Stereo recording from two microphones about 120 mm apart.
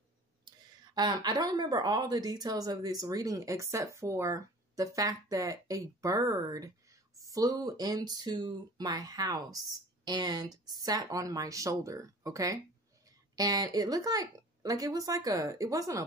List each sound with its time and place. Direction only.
0.5 s speech: 35° right (ahead or behind)